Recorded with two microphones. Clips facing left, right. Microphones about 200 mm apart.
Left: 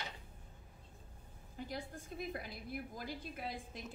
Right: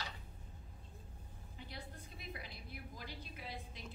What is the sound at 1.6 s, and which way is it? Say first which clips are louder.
A woman's voice: left 8 dB; 45° left (ahead or behind).